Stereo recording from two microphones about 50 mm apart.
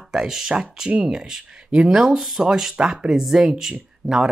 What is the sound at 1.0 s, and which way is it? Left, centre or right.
Speech, centre.